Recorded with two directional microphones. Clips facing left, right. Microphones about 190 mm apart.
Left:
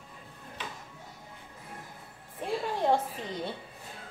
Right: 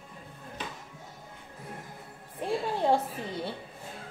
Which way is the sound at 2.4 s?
10° right (ahead or behind).